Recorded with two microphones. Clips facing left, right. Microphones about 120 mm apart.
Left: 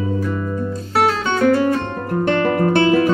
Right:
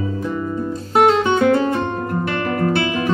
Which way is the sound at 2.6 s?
40° left (ahead or behind).